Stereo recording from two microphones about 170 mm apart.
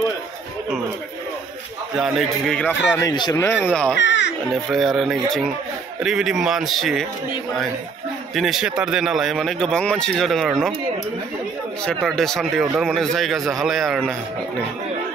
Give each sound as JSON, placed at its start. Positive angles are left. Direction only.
{"t": 2.0, "sound": "speech", "side_deg": 0}
{"t": 3.0, "sound": "speech", "side_deg": 25}
{"t": 3.6, "sound": "speech", "side_deg": 5}
{"t": 4.0, "sound": "music", "side_deg": 90}
{"t": 4.6, "sound": "speech", "side_deg": 0}
{"t": 8.4, "sound": "speech", "side_deg": 0}
{"t": 11.8, "sound": "speech", "side_deg": 0}